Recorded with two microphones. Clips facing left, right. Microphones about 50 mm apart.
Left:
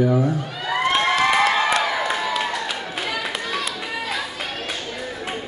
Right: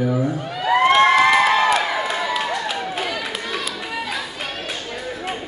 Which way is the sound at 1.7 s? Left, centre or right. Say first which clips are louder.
Right 1 dB; centre.